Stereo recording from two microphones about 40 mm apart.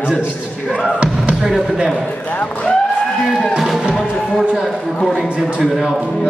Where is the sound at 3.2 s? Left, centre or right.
Centre.